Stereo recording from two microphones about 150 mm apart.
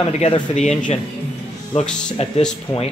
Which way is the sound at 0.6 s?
55° left (ahead or behind).